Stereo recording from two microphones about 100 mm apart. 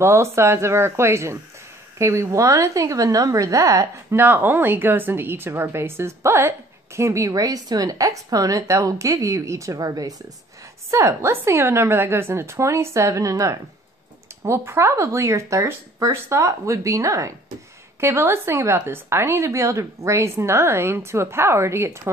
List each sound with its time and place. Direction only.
0.0 s a woman's voice: 25° right (ahead or behind)